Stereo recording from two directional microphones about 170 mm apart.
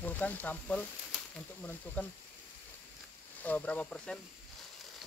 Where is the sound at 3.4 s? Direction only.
10° left (ahead or behind).